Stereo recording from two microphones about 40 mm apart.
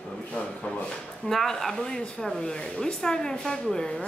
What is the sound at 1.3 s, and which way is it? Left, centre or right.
Speech, centre.